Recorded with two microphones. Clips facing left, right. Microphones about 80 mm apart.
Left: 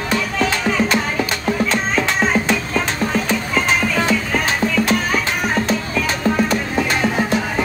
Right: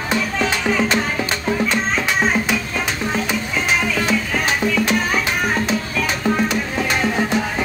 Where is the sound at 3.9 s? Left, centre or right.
Left.